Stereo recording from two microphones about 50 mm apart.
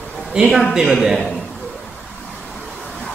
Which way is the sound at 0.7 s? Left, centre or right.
Centre.